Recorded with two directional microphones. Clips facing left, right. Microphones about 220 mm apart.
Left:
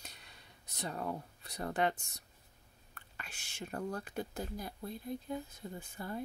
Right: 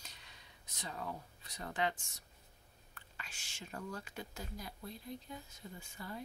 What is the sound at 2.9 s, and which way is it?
Speech, 55° left (ahead or behind).